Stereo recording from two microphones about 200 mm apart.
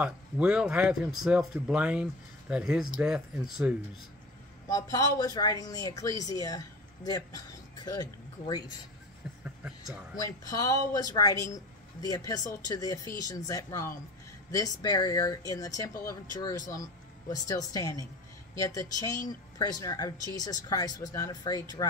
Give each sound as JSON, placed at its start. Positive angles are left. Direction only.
{"t": 0.0, "sound": "speech", "side_deg": -5}
{"t": 4.6, "sound": "speech", "side_deg": 15}
{"t": 9.4, "sound": "a sound", "side_deg": -5}
{"t": 10.2, "sound": "speech", "side_deg": 15}